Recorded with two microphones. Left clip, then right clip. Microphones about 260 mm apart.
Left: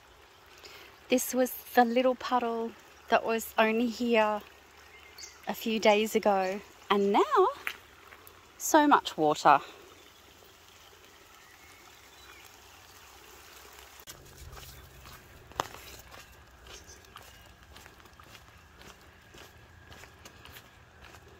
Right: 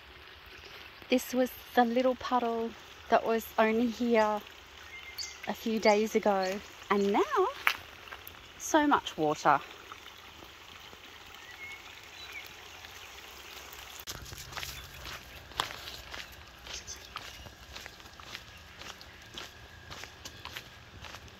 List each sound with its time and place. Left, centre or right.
1.3 s speech: left
3.3 s speech: left
3.8 s speech: centre
5.5 s speech: centre
8.6 s speech: left